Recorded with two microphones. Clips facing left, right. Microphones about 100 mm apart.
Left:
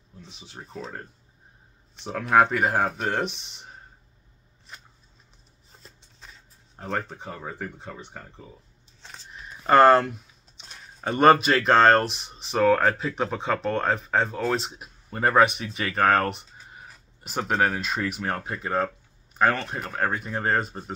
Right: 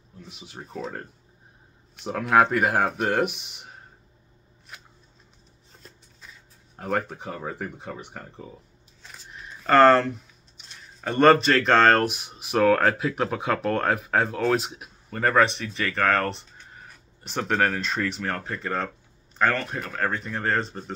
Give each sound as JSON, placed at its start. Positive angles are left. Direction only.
{"t": 0.4, "sound": "speech", "side_deg": -10}
{"t": 2.0, "sound": "speech", "side_deg": -10}
{"t": 6.8, "sound": "speech", "side_deg": -10}
{"t": 9.6, "sound": "speech", "side_deg": 15}
{"t": 15.1, "sound": "speech", "side_deg": 15}
{"t": 16.5, "sound": "crow", "side_deg": 5}
{"t": 18.2, "sound": "speech", "side_deg": 20}